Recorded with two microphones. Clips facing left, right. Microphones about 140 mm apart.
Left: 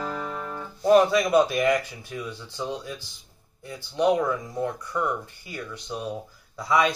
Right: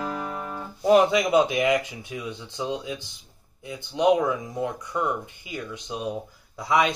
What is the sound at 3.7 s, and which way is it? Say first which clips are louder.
Speech: right 2 dB; 15° right (ahead or behind).